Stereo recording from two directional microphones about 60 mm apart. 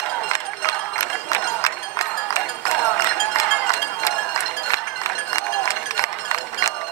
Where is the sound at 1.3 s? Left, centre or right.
Left.